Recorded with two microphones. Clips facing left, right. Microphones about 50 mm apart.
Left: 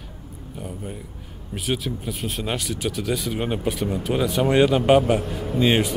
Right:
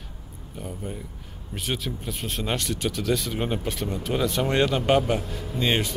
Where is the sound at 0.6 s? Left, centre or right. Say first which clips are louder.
Even; centre.